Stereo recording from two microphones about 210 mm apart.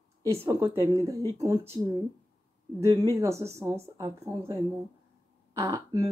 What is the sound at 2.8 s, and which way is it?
Speech, 15° right (ahead or behind).